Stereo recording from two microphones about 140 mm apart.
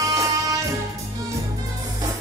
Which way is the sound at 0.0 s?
20° right (ahead or behind).